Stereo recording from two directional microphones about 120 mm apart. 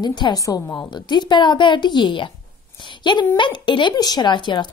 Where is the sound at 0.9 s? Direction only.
40° left (ahead or behind).